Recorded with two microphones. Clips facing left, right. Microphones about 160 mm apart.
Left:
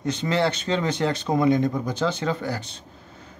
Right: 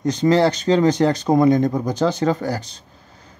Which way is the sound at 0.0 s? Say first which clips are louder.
Right 7 dB; 40° right (ahead or behind).